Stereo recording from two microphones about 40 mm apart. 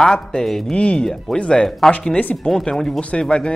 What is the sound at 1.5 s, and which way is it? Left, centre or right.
Speech, centre.